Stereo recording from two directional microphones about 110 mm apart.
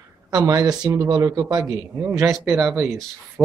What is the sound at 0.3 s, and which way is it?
Speech, 40° right (ahead or behind).